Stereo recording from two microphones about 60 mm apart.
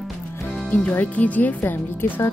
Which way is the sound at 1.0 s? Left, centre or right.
Left.